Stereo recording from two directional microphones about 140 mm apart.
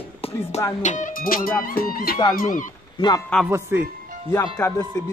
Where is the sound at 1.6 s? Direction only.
90° left.